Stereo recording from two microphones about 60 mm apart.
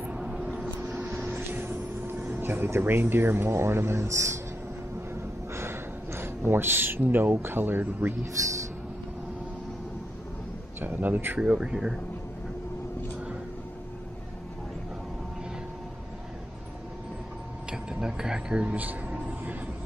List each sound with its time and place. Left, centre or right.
0.0 s vehicle: centre
1.3 s speech: right
5.1 s gasp: right
10.8 s speech: right
11.3 s speech: centre
17.6 s vehicle: centre
18.8 s a sound: right